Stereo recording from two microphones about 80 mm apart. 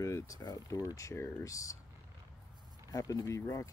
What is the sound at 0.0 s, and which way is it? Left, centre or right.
Speech, left.